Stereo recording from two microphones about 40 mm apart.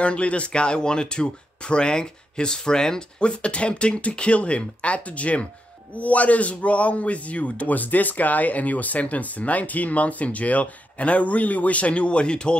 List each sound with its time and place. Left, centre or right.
0.0 s a man's voice: left